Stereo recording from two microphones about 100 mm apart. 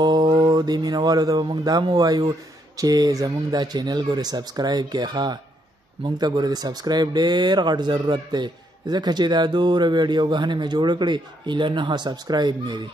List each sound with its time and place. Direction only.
0.0 s speech: 45° right (ahead or behind)